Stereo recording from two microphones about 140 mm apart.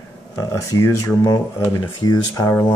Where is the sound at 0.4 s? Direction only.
20° left (ahead or behind).